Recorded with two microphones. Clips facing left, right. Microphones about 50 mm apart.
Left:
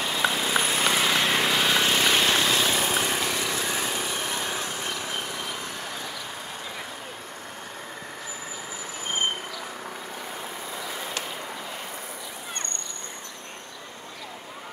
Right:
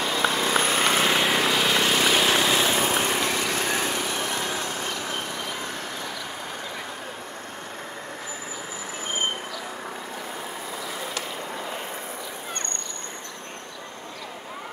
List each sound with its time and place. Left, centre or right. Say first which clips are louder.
0.2 s vehicle: right 1 dB; centre
0.5 s a sound: right 2 dB; right
0.9 s vehicle: right 2 dB; centre
2.3 s vehicle: right 2 dB; centre
2.7 s vehicle: right 2 dB; right